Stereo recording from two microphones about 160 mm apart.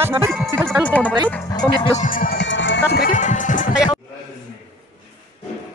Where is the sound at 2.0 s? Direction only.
60° left (ahead or behind); by 3.1 s 90° left.